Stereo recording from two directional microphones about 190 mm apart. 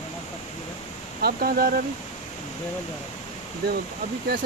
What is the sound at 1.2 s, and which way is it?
Speech, 50° right (ahead or behind).